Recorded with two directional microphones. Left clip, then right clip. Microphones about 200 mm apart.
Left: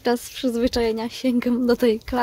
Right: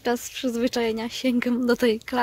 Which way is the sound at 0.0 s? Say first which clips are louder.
Left 3 dB; 10° left (ahead or behind).